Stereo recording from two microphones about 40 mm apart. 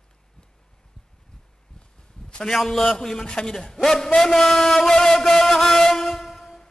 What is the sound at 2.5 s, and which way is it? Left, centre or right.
A man's voice, centre.